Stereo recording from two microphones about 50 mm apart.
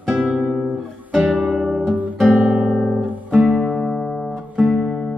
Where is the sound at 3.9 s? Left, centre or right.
Centre.